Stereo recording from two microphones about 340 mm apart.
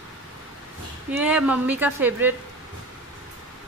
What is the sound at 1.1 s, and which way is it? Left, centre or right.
A woman's voice, centre.